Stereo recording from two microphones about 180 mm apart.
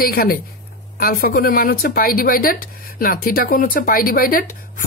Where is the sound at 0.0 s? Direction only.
55° left (ahead or behind).